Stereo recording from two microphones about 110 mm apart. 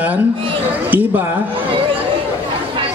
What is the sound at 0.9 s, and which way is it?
Speech, 15° right (ahead or behind).